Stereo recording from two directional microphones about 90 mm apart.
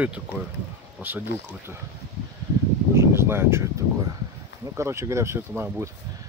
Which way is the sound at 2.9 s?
30° right (ahead or behind).